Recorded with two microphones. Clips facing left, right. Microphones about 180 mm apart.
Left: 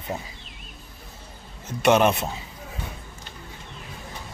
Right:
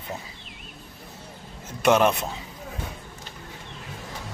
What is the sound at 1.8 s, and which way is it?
Speech, centre (ahead or behind).